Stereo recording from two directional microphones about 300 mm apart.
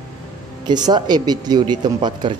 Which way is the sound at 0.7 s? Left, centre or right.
Centre.